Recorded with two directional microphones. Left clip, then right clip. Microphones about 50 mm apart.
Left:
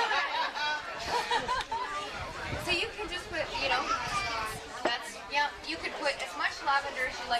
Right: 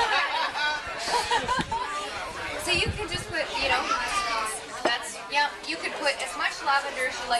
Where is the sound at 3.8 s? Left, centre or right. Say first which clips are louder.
Right 5 dB; right.